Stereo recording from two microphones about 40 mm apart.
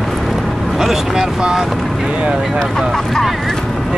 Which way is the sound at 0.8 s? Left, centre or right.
Centre.